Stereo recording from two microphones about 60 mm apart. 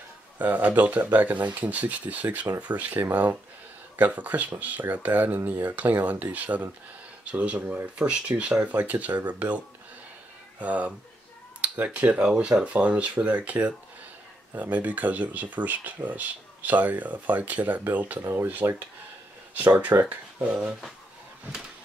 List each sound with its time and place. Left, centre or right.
0.4 s speech: right
8.7 s speech: right
10.6 s speech: right